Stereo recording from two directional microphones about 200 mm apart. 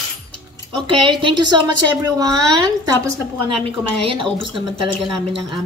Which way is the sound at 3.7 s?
25° right (ahead or behind).